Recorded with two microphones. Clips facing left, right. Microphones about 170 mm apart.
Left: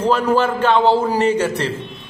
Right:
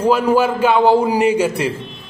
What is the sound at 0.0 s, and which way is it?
A man's voice, 10° right (ahead or behind).